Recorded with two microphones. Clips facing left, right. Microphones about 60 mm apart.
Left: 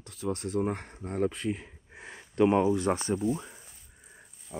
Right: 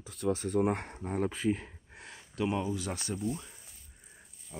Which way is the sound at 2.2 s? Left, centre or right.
Left.